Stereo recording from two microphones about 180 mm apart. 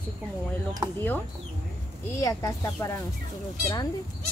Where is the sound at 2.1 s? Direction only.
20° left (ahead or behind).